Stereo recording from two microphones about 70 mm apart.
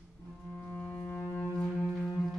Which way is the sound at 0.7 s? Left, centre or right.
Left.